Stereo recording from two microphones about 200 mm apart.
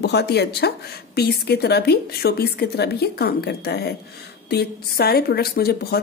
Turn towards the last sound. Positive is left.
turn(degrees=50)  # may be behind; listen again after turning